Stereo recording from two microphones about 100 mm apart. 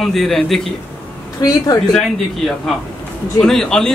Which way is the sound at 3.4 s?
5° left (ahead or behind).